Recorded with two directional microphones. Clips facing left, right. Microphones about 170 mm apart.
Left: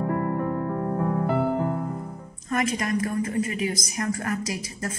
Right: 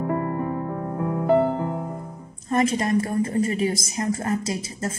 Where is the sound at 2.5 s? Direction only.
30° right (ahead or behind).